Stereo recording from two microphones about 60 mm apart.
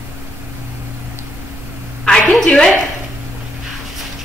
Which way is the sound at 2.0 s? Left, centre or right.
Centre.